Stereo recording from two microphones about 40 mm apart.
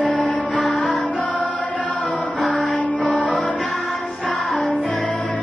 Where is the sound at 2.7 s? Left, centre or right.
Left.